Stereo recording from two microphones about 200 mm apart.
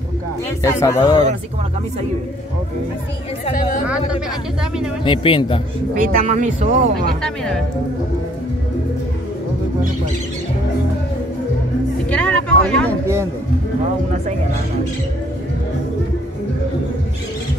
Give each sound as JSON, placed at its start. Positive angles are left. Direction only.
{"t": 0.6, "sound": "speech", "side_deg": 15}
{"t": 3.5, "sound": "a woman's voice", "side_deg": 45}
{"t": 3.8, "sound": "speech", "side_deg": -5}
{"t": 5.0, "sound": "speech", "side_deg": 25}
{"t": 5.9, "sound": "speech", "side_deg": -40}
{"t": 7.2, "sound": "speech", "side_deg": 5}
{"t": 12.1, "sound": "speech", "side_deg": 5}
{"t": 13.0, "sound": "a man's voice", "side_deg": -15}